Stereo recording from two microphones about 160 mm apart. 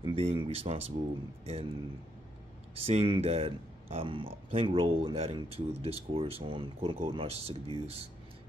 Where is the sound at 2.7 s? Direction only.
40° right (ahead or behind).